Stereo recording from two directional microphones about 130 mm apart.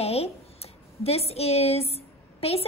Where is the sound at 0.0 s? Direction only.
50° left (ahead or behind).